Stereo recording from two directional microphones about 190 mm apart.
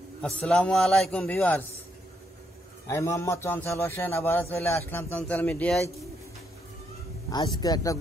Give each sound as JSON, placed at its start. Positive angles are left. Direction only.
{"t": 0.2, "sound": "a man's voice", "side_deg": 5}
{"t": 2.9, "sound": "a man's voice", "side_deg": 15}
{"t": 7.2, "sound": "a man's voice", "side_deg": 20}